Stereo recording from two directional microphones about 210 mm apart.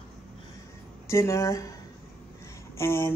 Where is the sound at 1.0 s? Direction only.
15° left (ahead or behind).